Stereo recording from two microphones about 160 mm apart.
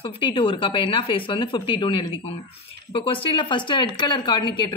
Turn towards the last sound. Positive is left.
turn(degrees=30)  # may be behind; listen again after turning